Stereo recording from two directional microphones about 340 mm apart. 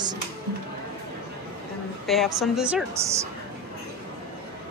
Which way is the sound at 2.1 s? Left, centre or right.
Centre.